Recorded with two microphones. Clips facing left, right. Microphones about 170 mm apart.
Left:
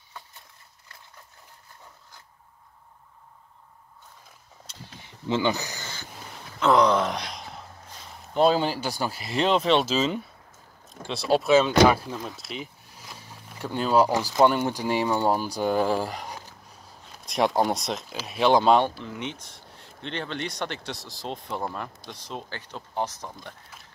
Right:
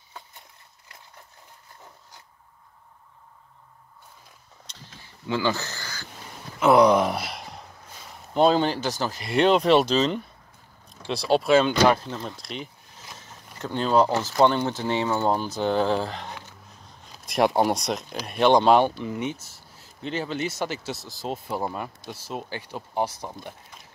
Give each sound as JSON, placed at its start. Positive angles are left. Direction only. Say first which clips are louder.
{"t": 5.0, "sound": "a sound", "louder": "left 1 dB", "side_deg": 20}
{"t": 6.6, "sound": "gasp", "louder": "right 3 dB", "side_deg": -10}
{"t": 8.3, "sound": "speech", "louder": "right 1 dB", "side_deg": 0}
{"t": 17.2, "sound": "speech", "louder": "right 2 dB", "side_deg": 0}